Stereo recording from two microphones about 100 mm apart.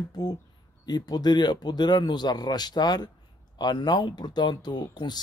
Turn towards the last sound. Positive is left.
turn(degrees=45)  # may be behind; listen again after turning